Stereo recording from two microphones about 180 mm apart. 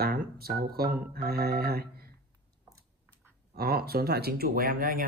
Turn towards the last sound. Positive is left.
turn(degrees=-55)  # may be behind; listen again after turning